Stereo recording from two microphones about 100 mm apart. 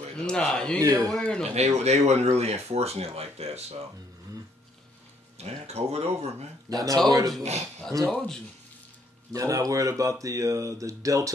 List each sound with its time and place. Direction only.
0.1 s a man's voice: 10° left (ahead or behind)
1.4 s speech: 90° right
5.4 s speech: 90° right
6.7 s speech: 35° right (ahead or behind)
9.3 s speech: 35° right (ahead or behind)